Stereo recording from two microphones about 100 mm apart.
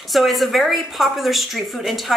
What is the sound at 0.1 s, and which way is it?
A woman's voice, centre (ahead or behind).